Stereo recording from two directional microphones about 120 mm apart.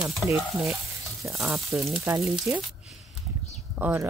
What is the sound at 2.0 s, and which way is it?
Speech, 25° right (ahead or behind).